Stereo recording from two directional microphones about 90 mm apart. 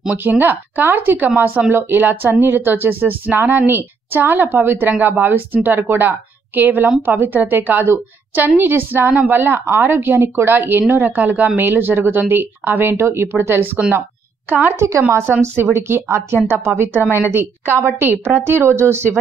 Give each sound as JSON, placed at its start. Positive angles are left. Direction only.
{"t": 0.2, "sound": "a woman's voice", "side_deg": -20}
{"t": 14.9, "sound": "a woman's voice", "side_deg": -30}